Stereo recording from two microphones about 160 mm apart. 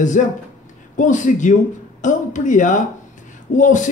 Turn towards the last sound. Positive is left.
turn(degrees=50)  # may be behind; listen again after turning